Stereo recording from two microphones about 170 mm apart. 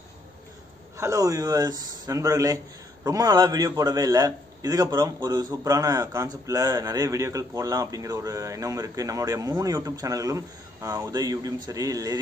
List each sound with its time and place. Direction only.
0.9 s speech: 20° right (ahead or behind)